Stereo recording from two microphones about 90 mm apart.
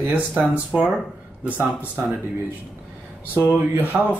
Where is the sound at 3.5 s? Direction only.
20° right (ahead or behind).